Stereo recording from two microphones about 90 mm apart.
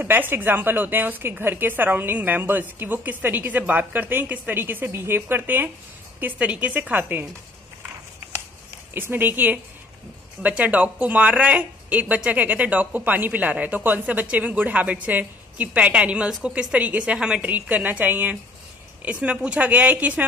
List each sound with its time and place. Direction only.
0.0 s a woman's voice: 20° right (ahead or behind)
8.9 s a woman's voice: 25° right (ahead or behind)